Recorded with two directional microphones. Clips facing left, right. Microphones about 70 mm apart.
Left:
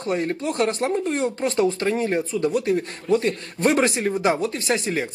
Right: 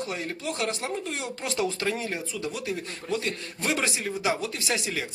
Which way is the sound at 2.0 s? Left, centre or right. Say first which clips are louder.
Left 10 dB; left.